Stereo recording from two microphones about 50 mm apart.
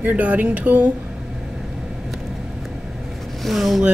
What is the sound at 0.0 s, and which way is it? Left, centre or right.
Speech, right.